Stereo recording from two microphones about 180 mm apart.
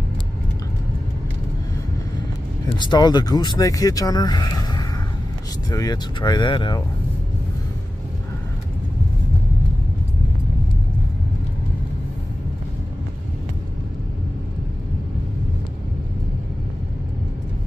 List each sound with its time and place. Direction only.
2.8 s speech: 25° left (ahead or behind)